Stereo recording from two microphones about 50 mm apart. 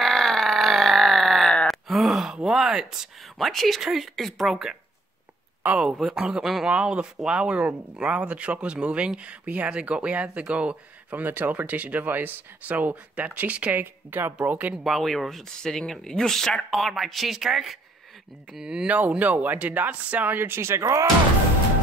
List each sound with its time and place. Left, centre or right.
0.0 s a sound: centre
1.7 s gasp: centre
2.4 s speech: centre
3.3 s speech: centre
5.9 s speech: centre
11.1 s speech: right
14.1 s speech: right
14.9 s speech: centre
18.9 s speech: right
20.3 s speech: right